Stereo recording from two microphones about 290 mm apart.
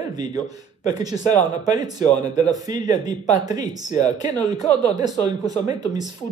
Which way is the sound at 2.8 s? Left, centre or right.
Left.